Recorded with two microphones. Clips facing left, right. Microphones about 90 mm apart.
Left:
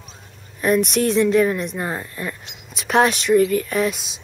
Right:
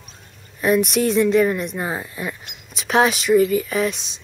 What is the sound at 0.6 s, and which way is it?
A woman's voice, centre (ahead or behind).